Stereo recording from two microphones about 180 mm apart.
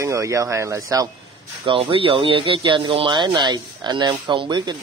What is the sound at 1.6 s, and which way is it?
Speech, 30° right (ahead or behind).